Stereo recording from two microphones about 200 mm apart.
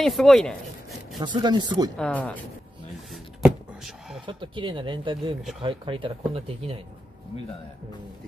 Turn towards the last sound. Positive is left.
turn(degrees=-25)  # may be behind; listen again after turning